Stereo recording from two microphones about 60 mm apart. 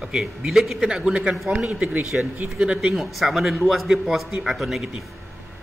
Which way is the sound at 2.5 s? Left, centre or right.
Centre.